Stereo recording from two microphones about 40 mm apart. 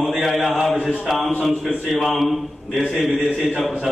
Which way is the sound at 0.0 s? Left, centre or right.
Centre.